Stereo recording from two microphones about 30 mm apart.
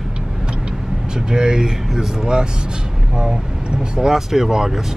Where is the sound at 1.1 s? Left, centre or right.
Right.